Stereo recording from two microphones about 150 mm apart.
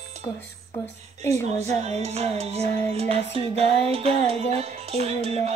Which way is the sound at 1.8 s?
45° right (ahead or behind).